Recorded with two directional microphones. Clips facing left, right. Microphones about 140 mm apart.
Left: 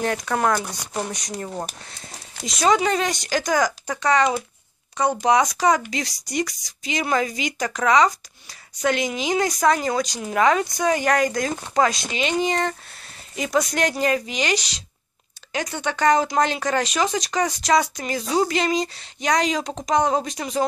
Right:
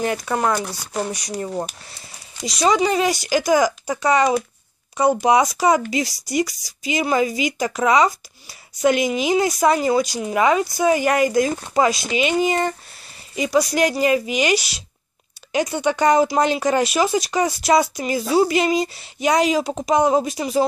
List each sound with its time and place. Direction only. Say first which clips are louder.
0.0 s speech: right 1 dB; 5° right (ahead or behind)